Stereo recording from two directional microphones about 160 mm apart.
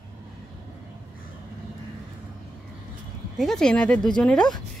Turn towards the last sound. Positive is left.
turn(degrees=5)  # may be behind; listen again after turning